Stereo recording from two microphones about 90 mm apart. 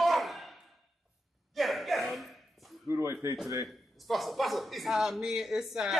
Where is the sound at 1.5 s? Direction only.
Centre (ahead or behind).